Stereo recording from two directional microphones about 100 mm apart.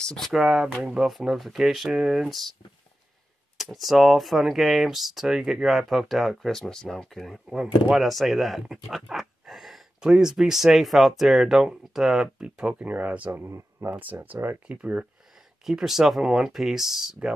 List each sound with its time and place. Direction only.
0.0 s speech: 5° left (ahead or behind)
3.5 s speech: centre (ahead or behind)
13.3 s speech: 25° right (ahead or behind)
15.6 s speech: 5° right (ahead or behind)